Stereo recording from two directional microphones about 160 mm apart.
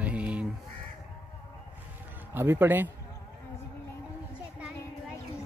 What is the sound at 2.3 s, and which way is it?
Speech, 15° right (ahead or behind).